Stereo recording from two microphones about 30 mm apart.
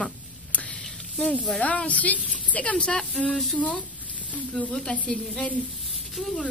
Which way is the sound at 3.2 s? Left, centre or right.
Left.